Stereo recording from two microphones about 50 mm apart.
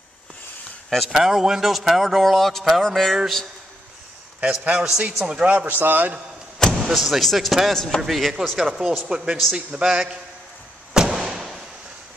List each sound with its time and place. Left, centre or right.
0.8 s speech: centre
1.1 s speech: centre
2.8 s music: centre
4.5 s a man's voice: centre
5.7 s a man's voice: right
6.7 s a man's voice: centre
11.1 s a sound: centre